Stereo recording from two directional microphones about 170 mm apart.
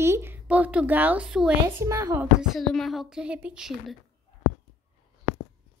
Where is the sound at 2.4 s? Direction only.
Centre (ahead or behind).